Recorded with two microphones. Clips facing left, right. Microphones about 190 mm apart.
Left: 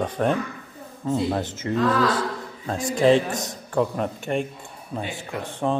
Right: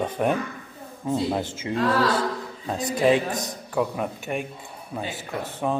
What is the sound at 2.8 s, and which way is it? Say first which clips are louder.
Speech: left 2 dB; 20° right (ahead or behind).